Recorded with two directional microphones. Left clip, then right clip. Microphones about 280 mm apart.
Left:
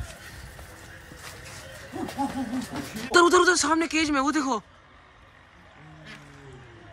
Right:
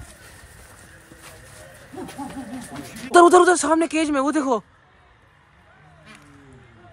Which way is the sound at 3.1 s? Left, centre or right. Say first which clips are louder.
Right 6 dB; centre.